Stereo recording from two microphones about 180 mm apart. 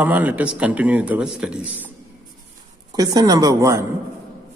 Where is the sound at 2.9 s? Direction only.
20° right (ahead or behind).